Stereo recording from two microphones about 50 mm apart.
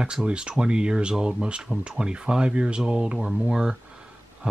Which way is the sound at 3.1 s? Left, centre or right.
Centre.